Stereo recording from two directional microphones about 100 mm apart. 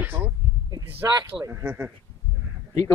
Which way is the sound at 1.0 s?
35° right (ahead or behind).